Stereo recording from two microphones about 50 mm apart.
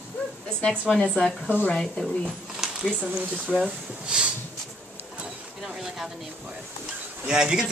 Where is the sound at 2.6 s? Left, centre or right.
Centre.